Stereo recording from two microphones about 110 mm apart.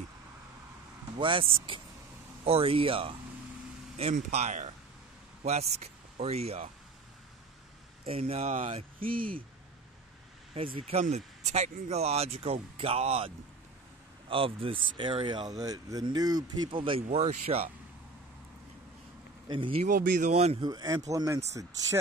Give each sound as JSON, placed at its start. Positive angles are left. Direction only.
{"t": 1.1, "sound": "speech", "side_deg": -55}
{"t": 4.0, "sound": "speech", "side_deg": -80}
{"t": 8.0, "sound": "speech", "side_deg": -65}
{"t": 10.5, "sound": "speech", "side_deg": -65}
{"t": 14.3, "sound": "speech", "side_deg": -55}
{"t": 17.2, "sound": "speech", "side_deg": -80}
{"t": 19.4, "sound": "speech", "side_deg": -45}
{"t": 19.8, "sound": "speech", "side_deg": -90}
{"t": 20.6, "sound": "speech", "side_deg": -35}